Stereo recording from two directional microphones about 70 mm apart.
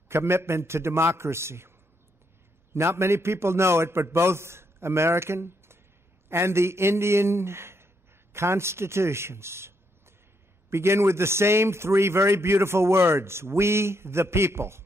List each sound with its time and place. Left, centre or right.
0.1 s a man's voice: right
2.7 s a man's voice: right